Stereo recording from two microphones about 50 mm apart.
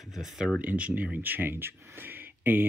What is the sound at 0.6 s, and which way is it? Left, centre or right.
Speech, right.